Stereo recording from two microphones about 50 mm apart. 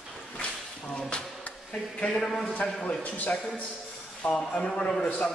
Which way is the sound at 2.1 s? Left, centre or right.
Centre.